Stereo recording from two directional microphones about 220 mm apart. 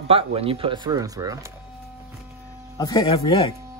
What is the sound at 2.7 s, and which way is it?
Speech, 20° left (ahead or behind).